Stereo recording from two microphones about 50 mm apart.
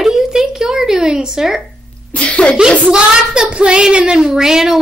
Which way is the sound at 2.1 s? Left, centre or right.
Left.